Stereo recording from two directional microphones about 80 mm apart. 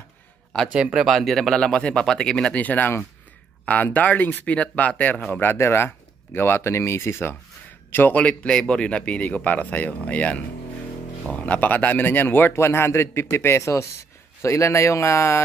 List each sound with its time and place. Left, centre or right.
0.9 s speech: centre
2.5 s a man's voice: centre
5.4 s a man's voice: left